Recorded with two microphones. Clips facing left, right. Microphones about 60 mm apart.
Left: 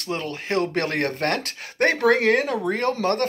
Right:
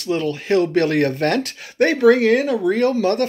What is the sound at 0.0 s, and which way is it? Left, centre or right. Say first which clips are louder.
Speech: right 7 dB; left.